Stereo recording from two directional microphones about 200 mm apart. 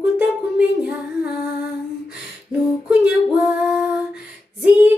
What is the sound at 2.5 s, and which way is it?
Female singing, 5° right (ahead or behind).